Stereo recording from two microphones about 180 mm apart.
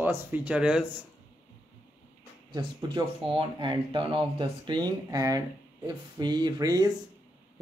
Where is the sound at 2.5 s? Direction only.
25° right (ahead or behind).